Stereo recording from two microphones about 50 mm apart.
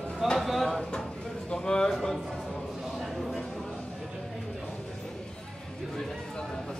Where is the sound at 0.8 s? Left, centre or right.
Centre.